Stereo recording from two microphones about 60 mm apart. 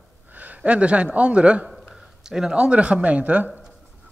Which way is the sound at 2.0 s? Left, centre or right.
Centre.